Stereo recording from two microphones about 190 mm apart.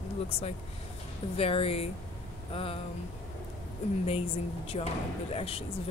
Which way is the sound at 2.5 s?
30° left (ahead or behind).